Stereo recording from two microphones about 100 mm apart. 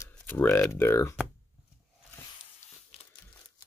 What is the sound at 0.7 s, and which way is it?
Speech, 30° left (ahead or behind).